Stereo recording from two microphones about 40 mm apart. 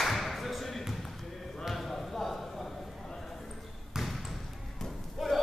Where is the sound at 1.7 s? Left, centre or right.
Centre.